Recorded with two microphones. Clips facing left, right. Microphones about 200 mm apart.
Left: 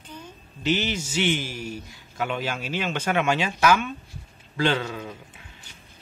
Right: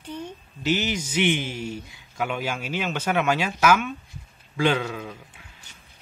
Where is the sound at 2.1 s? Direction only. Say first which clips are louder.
Even; 10° right (ahead or behind).